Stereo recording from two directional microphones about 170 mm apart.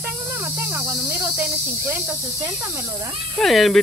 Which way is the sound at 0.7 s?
15° right (ahead or behind).